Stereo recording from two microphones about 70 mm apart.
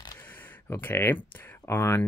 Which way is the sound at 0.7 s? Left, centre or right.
Left.